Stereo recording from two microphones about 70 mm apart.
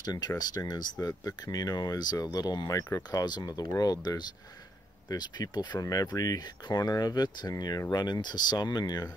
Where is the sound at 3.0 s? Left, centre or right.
Left.